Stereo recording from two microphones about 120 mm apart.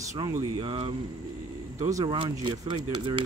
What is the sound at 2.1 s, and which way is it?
Speech, 45° right (ahead or behind).